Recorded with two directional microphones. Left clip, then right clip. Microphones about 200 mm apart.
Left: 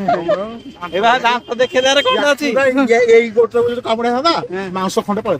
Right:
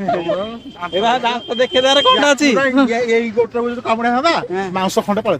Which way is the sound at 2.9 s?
55° left (ahead or behind).